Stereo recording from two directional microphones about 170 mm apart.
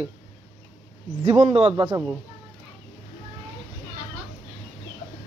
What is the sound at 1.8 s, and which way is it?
Speech, 15° right (ahead or behind).